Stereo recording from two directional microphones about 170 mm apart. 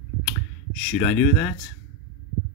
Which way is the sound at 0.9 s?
10° left (ahead or behind).